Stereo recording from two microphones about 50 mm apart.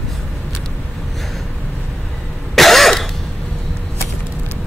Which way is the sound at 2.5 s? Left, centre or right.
Centre.